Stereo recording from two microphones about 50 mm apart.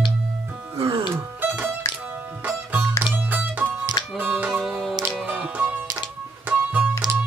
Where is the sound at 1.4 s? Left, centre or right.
Right.